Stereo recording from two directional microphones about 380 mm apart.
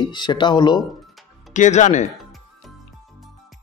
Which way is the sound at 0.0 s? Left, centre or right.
Centre.